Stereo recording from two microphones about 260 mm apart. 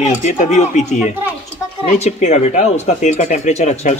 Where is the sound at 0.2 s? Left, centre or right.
Left.